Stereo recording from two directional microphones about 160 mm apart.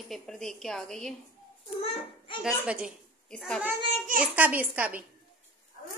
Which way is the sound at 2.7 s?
5° right (ahead or behind).